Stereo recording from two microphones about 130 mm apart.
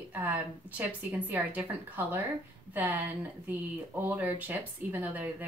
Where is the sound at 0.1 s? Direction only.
15° right (ahead or behind).